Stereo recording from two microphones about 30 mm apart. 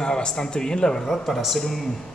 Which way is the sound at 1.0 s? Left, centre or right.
Centre.